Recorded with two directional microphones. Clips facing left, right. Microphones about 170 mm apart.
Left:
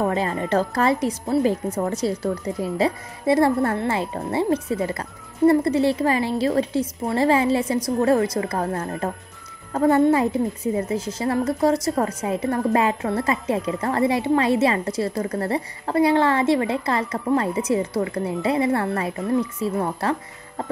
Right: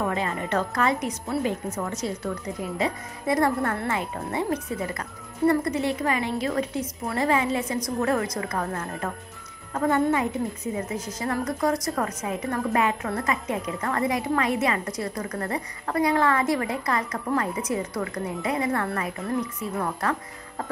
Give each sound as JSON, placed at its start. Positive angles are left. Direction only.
{"t": 0.0, "sound": "a woman's voice", "side_deg": 35}